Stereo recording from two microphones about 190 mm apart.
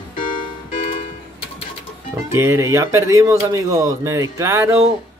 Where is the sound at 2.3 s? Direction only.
15° right (ahead or behind).